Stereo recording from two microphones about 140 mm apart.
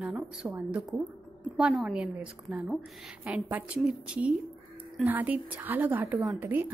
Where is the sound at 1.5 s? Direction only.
5° right (ahead or behind).